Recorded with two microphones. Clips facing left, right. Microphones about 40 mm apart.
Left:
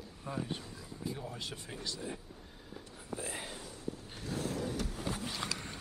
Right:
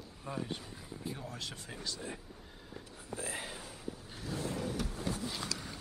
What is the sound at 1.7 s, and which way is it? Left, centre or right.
Speech, centre.